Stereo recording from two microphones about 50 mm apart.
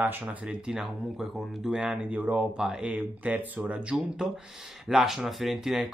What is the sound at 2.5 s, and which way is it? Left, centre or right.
Speech, centre.